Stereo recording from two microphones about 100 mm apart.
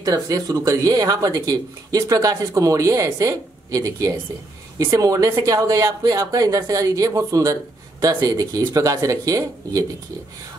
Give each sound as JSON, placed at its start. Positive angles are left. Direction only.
{"t": 0.0, "sound": "speech", "side_deg": -35}